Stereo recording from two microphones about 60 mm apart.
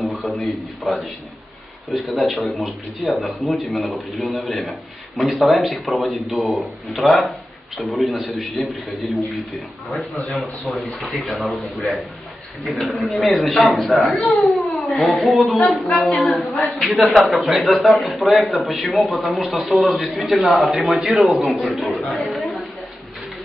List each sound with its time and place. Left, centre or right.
0.5 s a man's voice: centre
11.2 s a man's voice: centre
15.0 s speech: left
15.2 s a man's voice: centre
22.2 s chatter: centre